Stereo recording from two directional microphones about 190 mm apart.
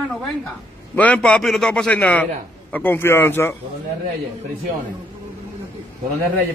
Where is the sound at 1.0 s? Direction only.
5° left (ahead or behind).